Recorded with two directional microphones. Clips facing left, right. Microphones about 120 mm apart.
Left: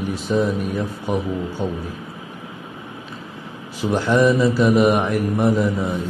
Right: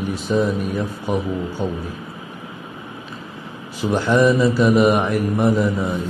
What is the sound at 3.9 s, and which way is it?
Mantra, 25° right (ahead or behind).